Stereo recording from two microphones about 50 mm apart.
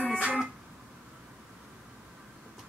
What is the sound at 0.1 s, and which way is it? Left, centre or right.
Guitar, right.